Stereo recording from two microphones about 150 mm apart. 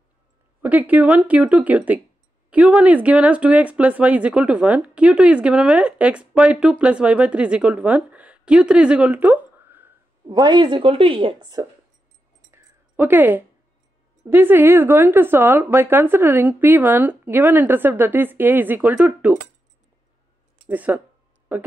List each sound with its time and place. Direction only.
0.6 s speech: 10° right (ahead or behind)
10.2 s a woman's voice: 25° right (ahead or behind)
11.6 s speech: 20° right (ahead or behind)
12.4 s a sound: 15° right (ahead or behind)
14.2 s speech: 15° right (ahead or behind)
20.6 s speech: 10° right (ahead or behind)